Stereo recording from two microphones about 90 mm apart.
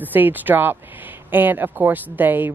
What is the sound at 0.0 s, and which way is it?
Speech, 20° right (ahead or behind).